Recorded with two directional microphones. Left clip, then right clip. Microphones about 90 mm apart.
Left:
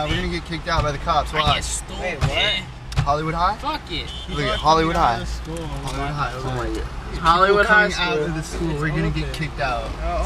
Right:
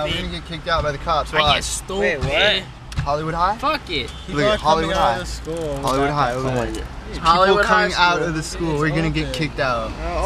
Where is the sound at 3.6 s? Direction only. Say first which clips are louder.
Right 5 dB; 35° right (ahead or behind).